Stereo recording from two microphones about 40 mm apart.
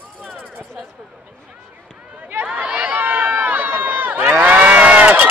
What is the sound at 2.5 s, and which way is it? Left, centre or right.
Run, right.